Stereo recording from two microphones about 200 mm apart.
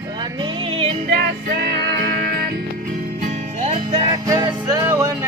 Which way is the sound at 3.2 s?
35° right (ahead or behind).